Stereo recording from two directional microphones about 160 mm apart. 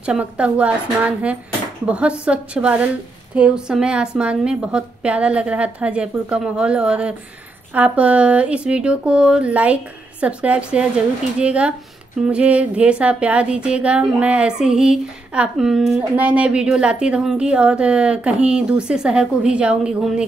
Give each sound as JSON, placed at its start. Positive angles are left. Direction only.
{"t": 0.0, "sound": "a woman's voice", "side_deg": -5}